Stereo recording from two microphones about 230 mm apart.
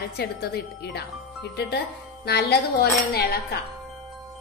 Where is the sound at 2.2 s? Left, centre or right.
Left.